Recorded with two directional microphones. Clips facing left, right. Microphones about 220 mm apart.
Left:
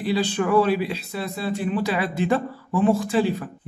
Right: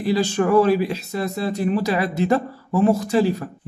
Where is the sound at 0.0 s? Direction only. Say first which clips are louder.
Right 3 dB; 45° right (ahead or behind).